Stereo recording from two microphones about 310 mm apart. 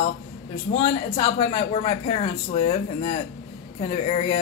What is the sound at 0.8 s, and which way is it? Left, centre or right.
Speech, centre.